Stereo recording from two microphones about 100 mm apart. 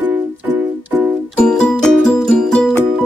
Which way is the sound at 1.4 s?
5° left (ahead or behind).